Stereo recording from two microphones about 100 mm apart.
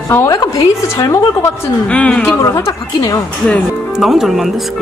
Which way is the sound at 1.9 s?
15° left (ahead or behind).